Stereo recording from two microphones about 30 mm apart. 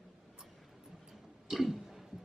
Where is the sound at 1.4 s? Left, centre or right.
Centre.